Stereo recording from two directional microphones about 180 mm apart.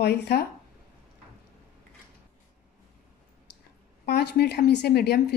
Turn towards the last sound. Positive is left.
turn(degrees=65)  # may be behind; listen again after turning